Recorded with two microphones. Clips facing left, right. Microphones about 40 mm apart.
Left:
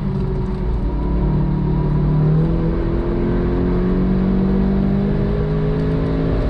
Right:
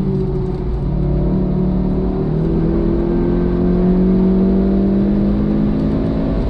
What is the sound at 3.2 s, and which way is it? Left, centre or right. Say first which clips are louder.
Vehicle: right 3 dB; centre.